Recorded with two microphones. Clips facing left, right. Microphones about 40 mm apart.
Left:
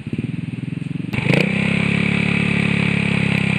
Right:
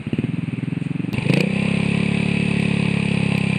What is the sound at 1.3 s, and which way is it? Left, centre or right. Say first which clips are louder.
Vehicle: left 3 dB; left.